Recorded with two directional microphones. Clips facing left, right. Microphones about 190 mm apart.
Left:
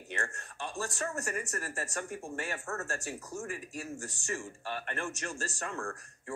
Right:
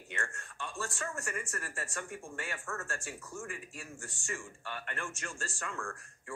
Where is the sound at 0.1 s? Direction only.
40° left (ahead or behind).